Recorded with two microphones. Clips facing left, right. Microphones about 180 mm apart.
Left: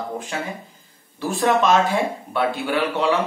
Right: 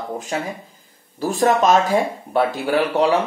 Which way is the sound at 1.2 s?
40° right (ahead or behind).